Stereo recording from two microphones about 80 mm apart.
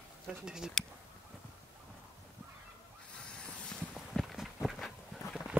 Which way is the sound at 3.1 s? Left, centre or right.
Centre.